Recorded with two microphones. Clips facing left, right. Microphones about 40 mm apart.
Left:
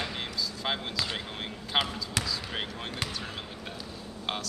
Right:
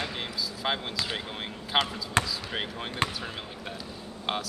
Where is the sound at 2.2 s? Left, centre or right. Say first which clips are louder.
Right 6 dB; right.